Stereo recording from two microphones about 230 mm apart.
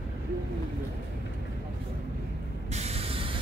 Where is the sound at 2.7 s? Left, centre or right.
Right.